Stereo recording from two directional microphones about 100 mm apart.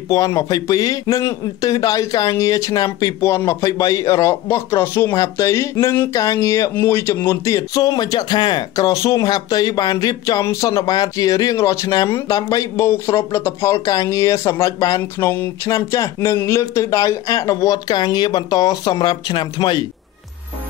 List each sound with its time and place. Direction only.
0.1 s speech: 35° left (ahead or behind)